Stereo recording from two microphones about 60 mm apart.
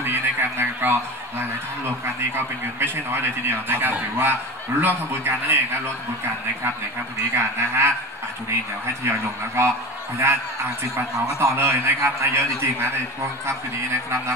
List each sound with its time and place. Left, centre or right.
0.0 s a sound: right
2.3 s a man's voice: right
7.3 s a man's voice: right
9.0 s a man's voice: right
11.0 s a man's voice: right